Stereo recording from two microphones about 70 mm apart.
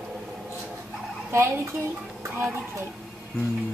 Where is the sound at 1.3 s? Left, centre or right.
Right.